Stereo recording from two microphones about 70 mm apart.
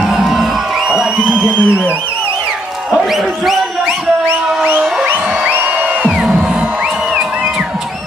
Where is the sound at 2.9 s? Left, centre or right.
Centre.